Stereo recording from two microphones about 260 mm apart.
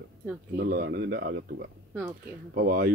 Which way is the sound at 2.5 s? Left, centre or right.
Right.